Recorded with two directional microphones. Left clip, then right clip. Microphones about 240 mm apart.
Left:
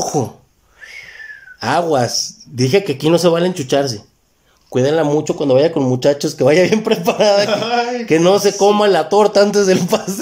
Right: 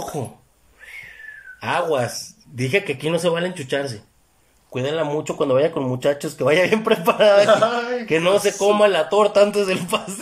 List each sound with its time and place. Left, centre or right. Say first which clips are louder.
0.0 s speech: left 10 dB; left
1.6 s a man's voice: left 6 dB; left
8.2 s speech: left 6 dB; left